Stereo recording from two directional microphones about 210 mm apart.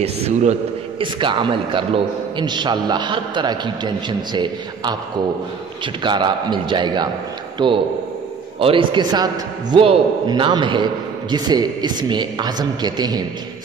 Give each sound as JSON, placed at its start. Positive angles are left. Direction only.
{"t": 0.0, "sound": "a man's voice", "side_deg": -30}
{"t": 6.0, "sound": "a man's voice", "side_deg": -20}